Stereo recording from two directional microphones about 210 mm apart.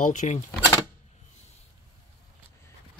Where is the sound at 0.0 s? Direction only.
35° left (ahead or behind).